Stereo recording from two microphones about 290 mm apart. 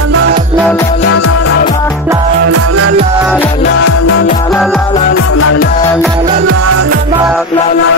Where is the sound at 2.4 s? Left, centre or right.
Right.